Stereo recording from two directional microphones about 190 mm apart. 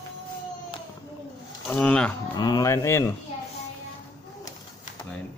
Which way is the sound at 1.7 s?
5° left (ahead or behind).